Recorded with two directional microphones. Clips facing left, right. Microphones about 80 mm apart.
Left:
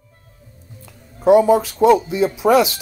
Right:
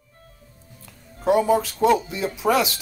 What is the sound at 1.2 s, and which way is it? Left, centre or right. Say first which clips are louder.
Speech: left 6 dB; centre.